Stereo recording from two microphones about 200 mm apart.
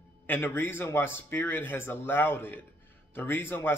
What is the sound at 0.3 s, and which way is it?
Speech, 10° left (ahead or behind).